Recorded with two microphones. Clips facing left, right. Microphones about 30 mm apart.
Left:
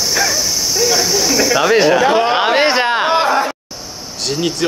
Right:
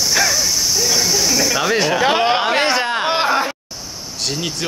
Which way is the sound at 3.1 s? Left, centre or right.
Centre.